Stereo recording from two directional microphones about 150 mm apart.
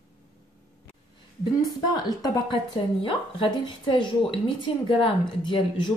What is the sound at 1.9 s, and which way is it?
Speech, 25° left (ahead or behind).